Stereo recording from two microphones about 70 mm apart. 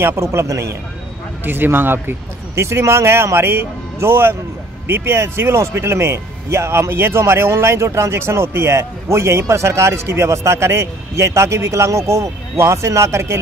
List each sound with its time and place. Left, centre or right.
0.0 s a man's voice: right
1.4 s speech: right